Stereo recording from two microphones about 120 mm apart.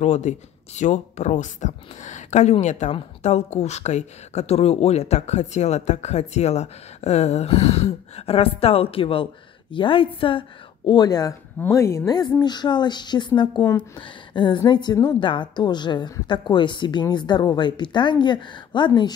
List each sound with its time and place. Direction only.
0.0 s a woman's voice: 75° left (ahead or behind); by 10.4 s 45° left (ahead or behind)
10.9 s a woman's voice: 35° left (ahead or behind)
12.1 s a woman's voice: 35° left (ahead or behind)